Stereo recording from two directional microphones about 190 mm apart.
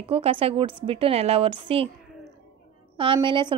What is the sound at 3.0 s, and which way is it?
Speech, 25° right (ahead or behind).